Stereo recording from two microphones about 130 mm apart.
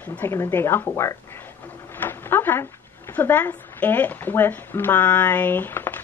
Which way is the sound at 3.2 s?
15° left (ahead or behind).